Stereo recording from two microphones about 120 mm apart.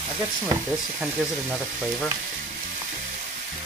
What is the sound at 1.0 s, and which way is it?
Speech, 10° right (ahead or behind).